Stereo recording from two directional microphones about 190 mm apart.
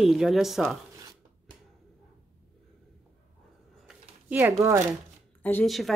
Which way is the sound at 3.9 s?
10° right (ahead or behind).